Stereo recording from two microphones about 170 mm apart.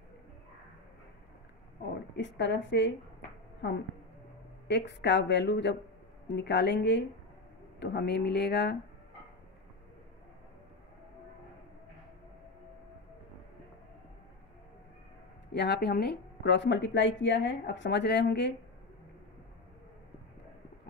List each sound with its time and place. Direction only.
2.1 s speech: 90° left
4.6 s speech: 90° left
7.8 s speech: 75° left (ahead or behind)
15.5 s speech: 80° left